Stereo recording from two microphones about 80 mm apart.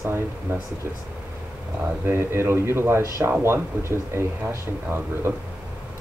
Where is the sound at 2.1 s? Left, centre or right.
Right.